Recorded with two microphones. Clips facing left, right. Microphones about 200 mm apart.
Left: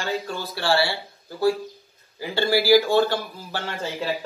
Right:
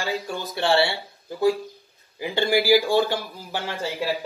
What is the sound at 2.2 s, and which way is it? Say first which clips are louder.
Speech: even; 15° right (ahead or behind).